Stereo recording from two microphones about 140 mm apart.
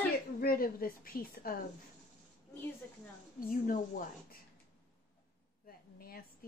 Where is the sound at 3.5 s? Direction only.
90° left.